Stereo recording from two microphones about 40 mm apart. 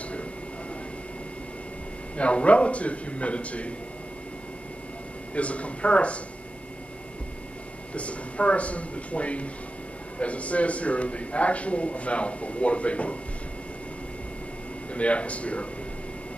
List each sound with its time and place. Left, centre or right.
2.1 s speech: left
5.3 s speech: left
7.9 s speech: left
15.0 s speech: left